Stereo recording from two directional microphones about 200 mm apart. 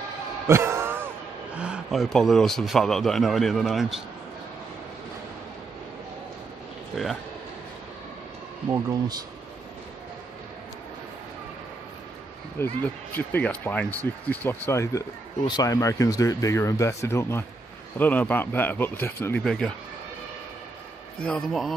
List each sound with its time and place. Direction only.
0.5 s speech: 10° right (ahead or behind)
12.5 s speech: 10° left (ahead or behind)
21.2 s a man's voice: 5° left (ahead or behind)